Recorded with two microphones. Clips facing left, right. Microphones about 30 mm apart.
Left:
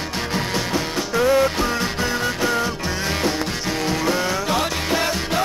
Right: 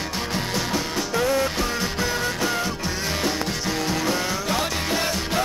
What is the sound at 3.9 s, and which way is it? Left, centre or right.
Music, centre.